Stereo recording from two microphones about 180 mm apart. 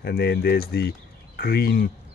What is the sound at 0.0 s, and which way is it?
Speech, 60° left (ahead or behind).